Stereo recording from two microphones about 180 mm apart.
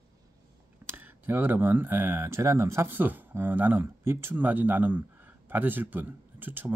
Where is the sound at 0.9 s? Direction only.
10° right (ahead or behind).